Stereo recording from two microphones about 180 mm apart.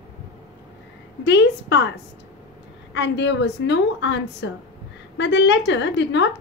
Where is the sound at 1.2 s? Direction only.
75° left (ahead or behind).